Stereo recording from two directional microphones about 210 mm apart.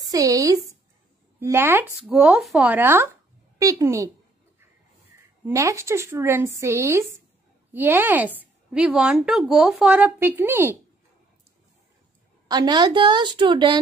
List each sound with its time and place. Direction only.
0.1 s speech: 15° right (ahead or behind)
5.5 s speech: 15° right (ahead or behind)
12.4 s a woman's voice: 20° right (ahead or behind)